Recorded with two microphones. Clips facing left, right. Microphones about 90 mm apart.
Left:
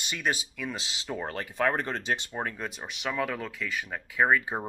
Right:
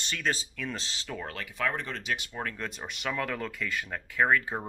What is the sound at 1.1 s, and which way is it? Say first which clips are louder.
Speech: left 5 dB; 35° left (ahead or behind).